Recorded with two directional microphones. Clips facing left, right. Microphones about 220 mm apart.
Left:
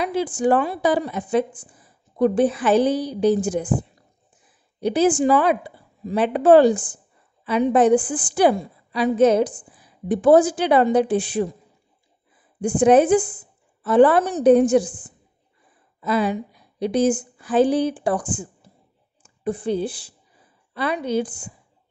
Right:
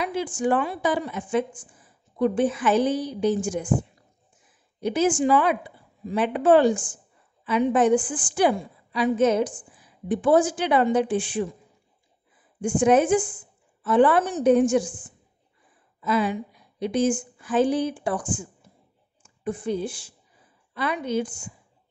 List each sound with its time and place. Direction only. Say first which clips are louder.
0.0 s a woman's voice: left 4 dB; 35° left (ahead or behind)
12.5 s a woman's voice: left 4 dB; 35° left (ahead or behind)